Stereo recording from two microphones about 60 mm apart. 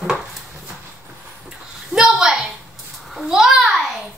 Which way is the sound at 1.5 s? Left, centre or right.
Centre.